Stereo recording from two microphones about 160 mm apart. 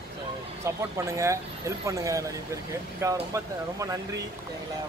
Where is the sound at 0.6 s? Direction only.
15° right (ahead or behind).